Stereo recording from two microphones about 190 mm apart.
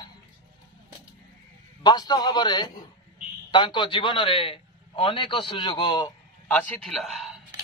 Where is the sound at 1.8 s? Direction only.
20° left (ahead or behind).